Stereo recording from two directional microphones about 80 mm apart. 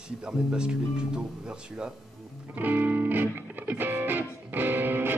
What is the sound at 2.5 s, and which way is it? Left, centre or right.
Music, right.